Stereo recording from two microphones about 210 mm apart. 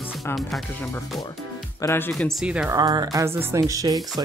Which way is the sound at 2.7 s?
20° right (ahead or behind).